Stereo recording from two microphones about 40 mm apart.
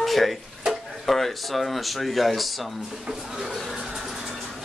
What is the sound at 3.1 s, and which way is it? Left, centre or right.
Cough, centre.